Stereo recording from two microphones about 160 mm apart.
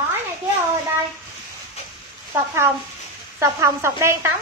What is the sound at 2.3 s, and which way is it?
A woman's voice, 15° right (ahead or behind).